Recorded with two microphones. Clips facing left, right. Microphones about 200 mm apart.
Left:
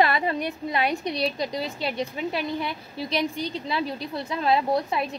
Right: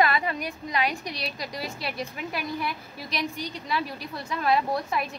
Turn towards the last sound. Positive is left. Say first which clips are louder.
# left 3 dB
turn(degrees=25)  # may be behind; listen again after turning